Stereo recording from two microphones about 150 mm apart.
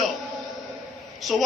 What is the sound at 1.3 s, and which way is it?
Speech, centre (ahead or behind).